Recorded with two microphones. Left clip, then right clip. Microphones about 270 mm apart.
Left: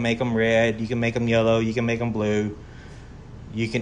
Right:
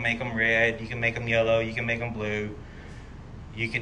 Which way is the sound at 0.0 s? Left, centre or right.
Centre.